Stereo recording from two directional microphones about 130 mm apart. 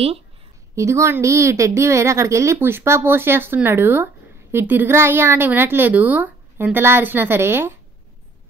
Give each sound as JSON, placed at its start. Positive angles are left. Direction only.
{"t": 0.7, "sound": "a woman's voice", "side_deg": -25}